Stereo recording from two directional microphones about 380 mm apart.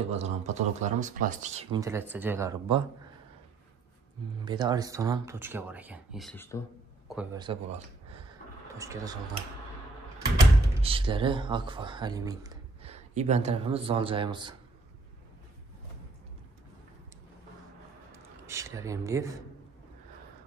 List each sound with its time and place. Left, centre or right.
0.1 s speech: centre
4.5 s speech: centre
7.1 s speech: centre
10.8 s speech: centre
18.1 s speech: centre